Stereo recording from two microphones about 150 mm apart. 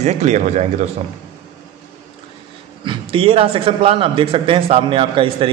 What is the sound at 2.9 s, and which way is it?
A man's voice, 35° right (ahead or behind).